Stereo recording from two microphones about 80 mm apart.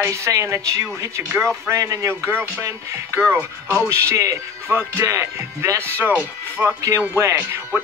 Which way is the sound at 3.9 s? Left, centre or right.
Right.